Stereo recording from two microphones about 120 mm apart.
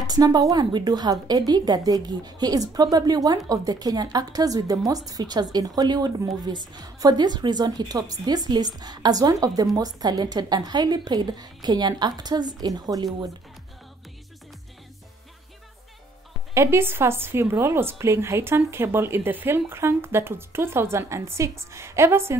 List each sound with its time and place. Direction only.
0.0 s a woman's voice: 35° right (ahead or behind)
16.5 s a woman's voice: 20° right (ahead or behind)